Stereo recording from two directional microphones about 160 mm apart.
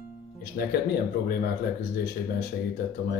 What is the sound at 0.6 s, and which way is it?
Speech, 65° left (ahead or behind).